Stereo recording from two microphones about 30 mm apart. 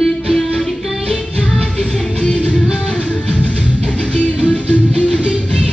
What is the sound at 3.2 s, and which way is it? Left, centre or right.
Music, left.